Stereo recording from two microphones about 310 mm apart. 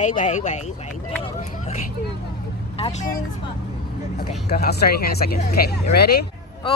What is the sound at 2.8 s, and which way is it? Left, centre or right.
Speech, left.